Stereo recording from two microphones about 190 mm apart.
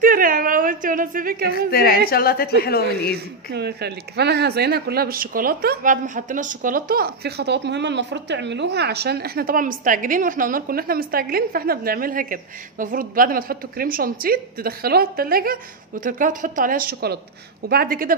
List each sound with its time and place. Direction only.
0.0 s a sound: 45° right (ahead or behind)
1.7 s a woman's voice: 55° left (ahead or behind)
3.5 s speech: 60° right (ahead or behind)